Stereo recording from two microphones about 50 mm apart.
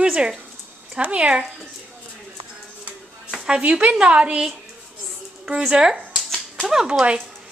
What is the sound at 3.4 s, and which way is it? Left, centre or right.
A woman's voice, centre.